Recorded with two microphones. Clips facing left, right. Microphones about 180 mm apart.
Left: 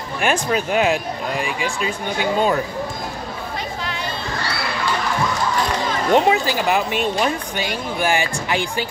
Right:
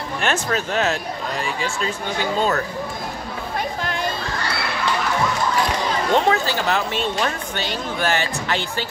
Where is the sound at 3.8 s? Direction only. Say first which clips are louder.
Right 3 dB; 50° right (ahead or behind).